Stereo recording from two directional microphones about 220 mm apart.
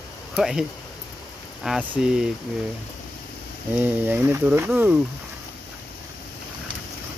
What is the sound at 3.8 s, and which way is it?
Speech, 10° right (ahead or behind).